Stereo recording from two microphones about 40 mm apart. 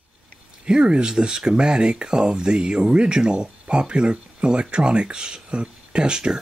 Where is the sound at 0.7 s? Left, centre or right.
Right.